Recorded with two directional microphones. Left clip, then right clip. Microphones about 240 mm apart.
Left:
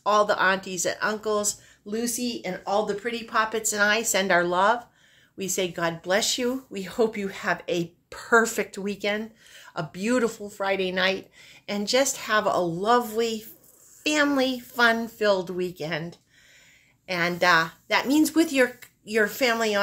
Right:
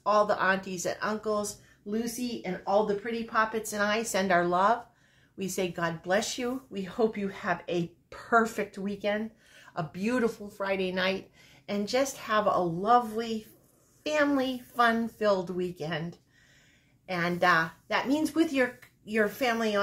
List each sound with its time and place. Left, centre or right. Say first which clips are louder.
0.0 s speech: left 4 dB; left